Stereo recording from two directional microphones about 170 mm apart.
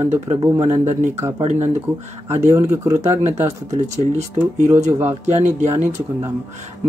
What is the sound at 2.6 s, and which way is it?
Speech, 20° right (ahead or behind).